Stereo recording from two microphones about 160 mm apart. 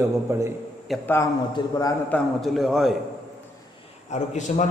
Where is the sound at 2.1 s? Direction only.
Centre (ahead or behind).